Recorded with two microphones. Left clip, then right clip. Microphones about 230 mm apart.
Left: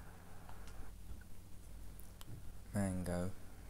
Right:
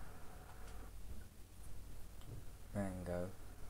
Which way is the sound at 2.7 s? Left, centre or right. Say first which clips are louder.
Left 2 dB; left.